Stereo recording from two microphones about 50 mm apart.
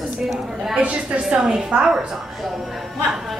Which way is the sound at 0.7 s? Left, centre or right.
Right.